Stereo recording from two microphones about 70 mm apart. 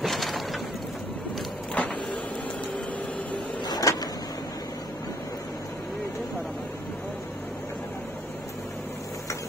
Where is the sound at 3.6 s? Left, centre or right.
Left.